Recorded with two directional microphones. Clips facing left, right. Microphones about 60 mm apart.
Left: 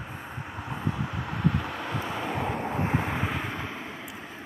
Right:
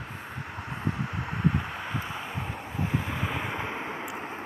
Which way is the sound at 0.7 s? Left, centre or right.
Right.